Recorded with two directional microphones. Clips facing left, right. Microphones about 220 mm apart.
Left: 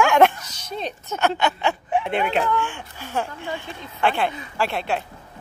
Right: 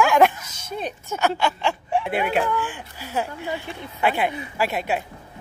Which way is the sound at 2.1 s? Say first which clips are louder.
Even; 10° right (ahead or behind).